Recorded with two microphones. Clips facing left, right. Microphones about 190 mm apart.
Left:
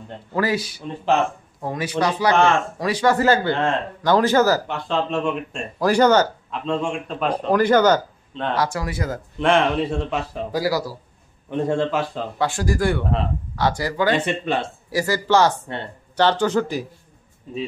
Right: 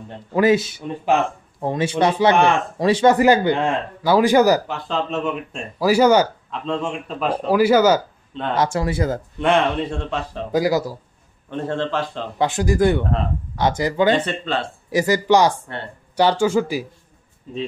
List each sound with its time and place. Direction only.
0.3 s speech: 20° right (ahead or behind)
3.2 s speech: 15° right (ahead or behind)
4.6 s a man's voice: centre (ahead or behind)
8.5 s speech: 25° right (ahead or behind)
9.4 s a man's voice: centre (ahead or behind)
10.5 s speech: 20° right (ahead or behind)
11.5 s a man's voice: 10° left (ahead or behind)
12.4 s speech: 20° right (ahead or behind)
14.1 s a man's voice: 10° left (ahead or behind)
14.9 s speech: 20° right (ahead or behind)